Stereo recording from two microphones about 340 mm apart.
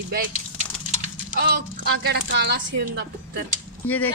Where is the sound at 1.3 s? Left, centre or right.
Right.